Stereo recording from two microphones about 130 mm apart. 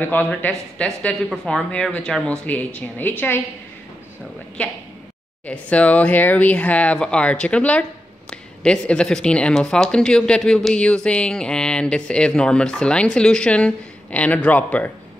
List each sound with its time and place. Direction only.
0.0 s speech: 15° left (ahead or behind)
5.5 s speech: 10° left (ahead or behind)